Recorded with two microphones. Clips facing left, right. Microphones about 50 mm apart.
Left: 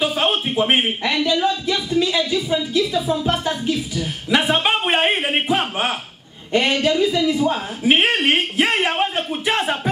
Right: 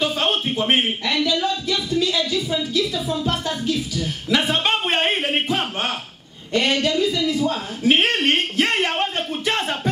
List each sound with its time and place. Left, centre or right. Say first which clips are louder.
0.0 s speech: left 2 dB; centre
3.3 s a sound: left 2 dB; left
6.5 s a man's voice: left 2 dB; centre